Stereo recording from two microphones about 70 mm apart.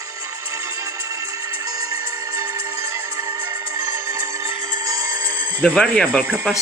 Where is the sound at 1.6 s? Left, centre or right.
Right.